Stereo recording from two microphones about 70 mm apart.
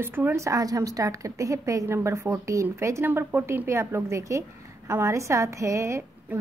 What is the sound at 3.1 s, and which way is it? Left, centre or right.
A woman's voice, right.